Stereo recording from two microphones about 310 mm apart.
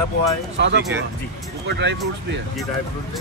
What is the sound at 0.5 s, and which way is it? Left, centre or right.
Speech, right.